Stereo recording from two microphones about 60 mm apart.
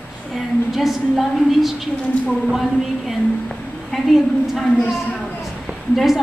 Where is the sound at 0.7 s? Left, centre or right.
Centre.